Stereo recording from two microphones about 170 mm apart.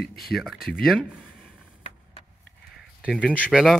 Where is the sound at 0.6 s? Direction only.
60° left (ahead or behind).